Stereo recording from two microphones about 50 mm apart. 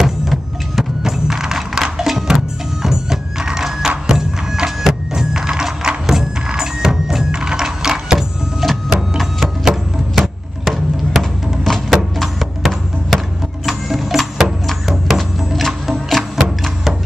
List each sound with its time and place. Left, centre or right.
0.0 s music: centre